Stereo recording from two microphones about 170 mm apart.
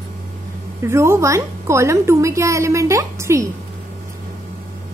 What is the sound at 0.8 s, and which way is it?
A woman's voice, 15° right (ahead or behind).